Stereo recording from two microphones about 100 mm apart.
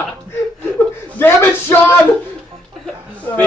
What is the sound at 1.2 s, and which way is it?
Speech, 20° left (ahead or behind).